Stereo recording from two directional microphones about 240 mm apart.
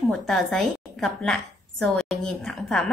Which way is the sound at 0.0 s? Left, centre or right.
Centre.